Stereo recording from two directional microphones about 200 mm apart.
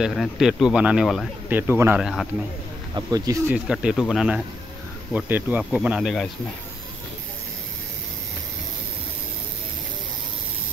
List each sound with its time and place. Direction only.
0.0 s speech: centre (ahead or behind)
2.9 s speech: 20° right (ahead or behind)
3.5 s speech: 5° right (ahead or behind)